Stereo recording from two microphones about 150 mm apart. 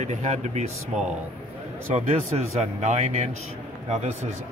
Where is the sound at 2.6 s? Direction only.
50° right (ahead or behind).